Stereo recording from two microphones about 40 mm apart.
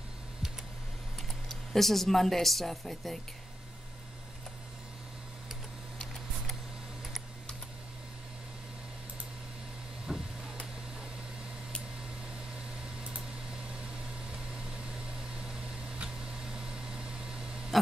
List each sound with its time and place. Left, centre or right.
1.7 s a woman's voice: centre
10.1 s vehicle: centre
13.5 s vehicle: right
14.3 s a sound: centre